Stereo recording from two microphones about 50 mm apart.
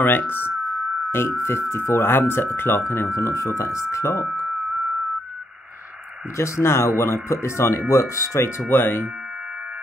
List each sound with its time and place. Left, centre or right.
1.1 s speech: left
3.9 s speech: left
6.3 s speech: left
7.9 s speech: left
8.6 s speech: left